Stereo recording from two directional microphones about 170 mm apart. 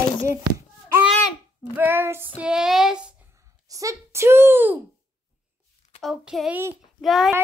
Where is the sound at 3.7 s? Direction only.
20° right (ahead or behind).